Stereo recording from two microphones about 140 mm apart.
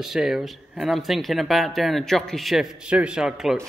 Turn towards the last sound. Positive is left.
turn(degrees=-5)  # may be behind; listen again after turning